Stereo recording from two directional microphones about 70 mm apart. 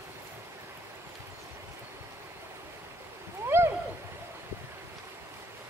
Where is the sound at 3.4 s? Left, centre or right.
Right.